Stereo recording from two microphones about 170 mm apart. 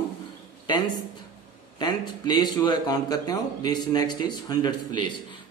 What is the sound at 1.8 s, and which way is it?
Speech, 25° left (ahead or behind).